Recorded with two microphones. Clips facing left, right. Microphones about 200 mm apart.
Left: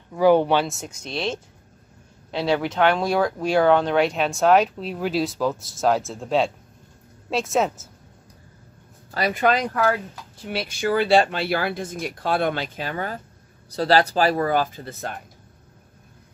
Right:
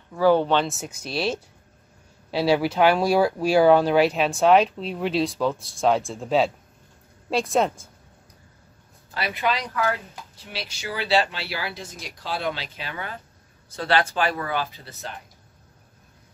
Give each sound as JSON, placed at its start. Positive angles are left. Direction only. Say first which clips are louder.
{"t": 0.1, "sound": "speech", "louder": "left 2 dB", "side_deg": 15}
{"t": 0.7, "sound": "speech", "louder": "right 1 dB", "side_deg": -5}
{"t": 9.1, "sound": "speech", "louder": "left 5 dB", "side_deg": 45}